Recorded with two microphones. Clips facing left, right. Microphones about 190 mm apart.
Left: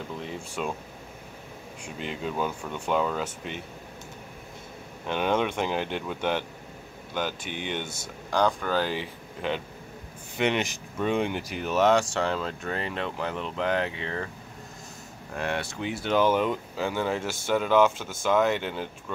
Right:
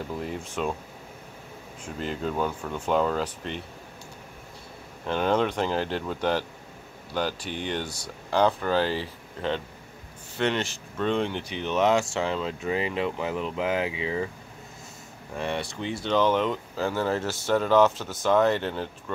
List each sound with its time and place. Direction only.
0.1 s speech: centre (ahead or behind)
2.0 s speech: centre (ahead or behind)
5.0 s speech: 10° left (ahead or behind)
7.8 s speech: 25° left (ahead or behind)
8.3 s speech: 5° right (ahead or behind)
8.9 s speech: 10° left (ahead or behind); by 14.3 s 5° right (ahead or behind)
15.3 s speech: centre (ahead or behind)